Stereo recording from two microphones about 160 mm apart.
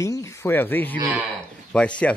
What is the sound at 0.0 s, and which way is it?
Speech, 20° left (ahead or behind).